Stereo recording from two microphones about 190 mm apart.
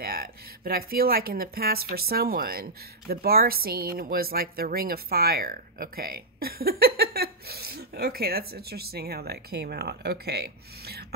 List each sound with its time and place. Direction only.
0.0 s speech: 50° right (ahead or behind)